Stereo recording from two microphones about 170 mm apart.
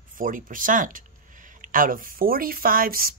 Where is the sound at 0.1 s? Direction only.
55° right (ahead or behind).